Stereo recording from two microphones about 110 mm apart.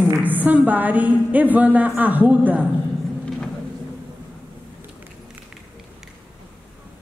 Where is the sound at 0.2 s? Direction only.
15° right (ahead or behind).